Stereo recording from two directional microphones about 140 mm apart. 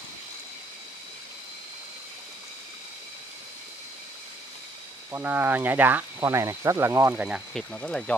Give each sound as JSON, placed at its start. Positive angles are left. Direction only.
{"t": 5.1, "sound": "speech", "side_deg": -15}
{"t": 7.5, "sound": "speech", "side_deg": 5}